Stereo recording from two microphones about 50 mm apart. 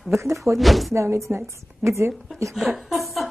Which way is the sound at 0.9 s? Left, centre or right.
Right.